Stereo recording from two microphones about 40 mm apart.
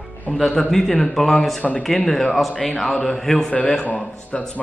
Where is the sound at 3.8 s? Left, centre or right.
Left.